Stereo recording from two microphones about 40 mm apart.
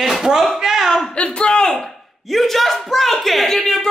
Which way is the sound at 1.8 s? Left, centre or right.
Centre.